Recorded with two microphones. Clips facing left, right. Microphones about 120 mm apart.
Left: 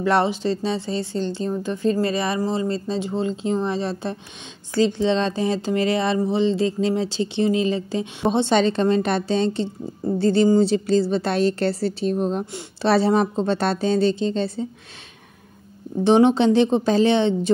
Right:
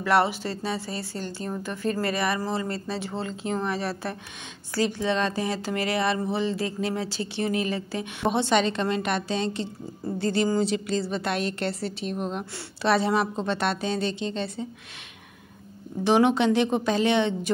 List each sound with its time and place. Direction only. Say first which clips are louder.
0.0 s a woman's voice: left 3 dB; 25° left (ahead or behind)
16.0 s speech: left 5 dB; 30° left (ahead or behind)